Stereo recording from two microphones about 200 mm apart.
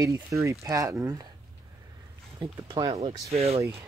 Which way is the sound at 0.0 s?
15° right (ahead or behind).